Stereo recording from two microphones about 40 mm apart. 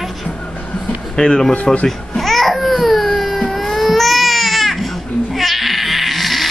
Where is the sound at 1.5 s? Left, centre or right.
Left.